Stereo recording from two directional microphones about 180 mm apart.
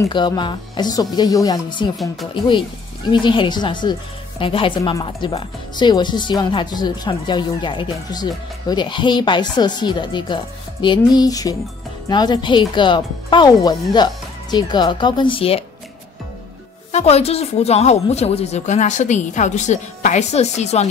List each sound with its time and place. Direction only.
0.0 s speech: 20° left (ahead or behind)
3.1 s speech: 25° left (ahead or behind)
16.9 s speech: 35° left (ahead or behind)